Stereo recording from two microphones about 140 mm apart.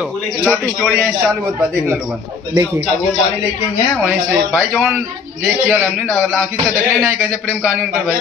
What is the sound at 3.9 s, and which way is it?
A man's voice, centre (ahead or behind).